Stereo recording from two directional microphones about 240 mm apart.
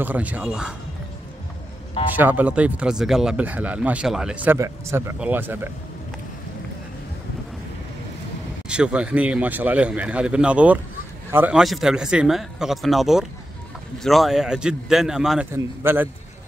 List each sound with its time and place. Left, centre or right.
0.0 s speech: centre
2.1 s a man's voice: centre
8.6 s a man's voice: centre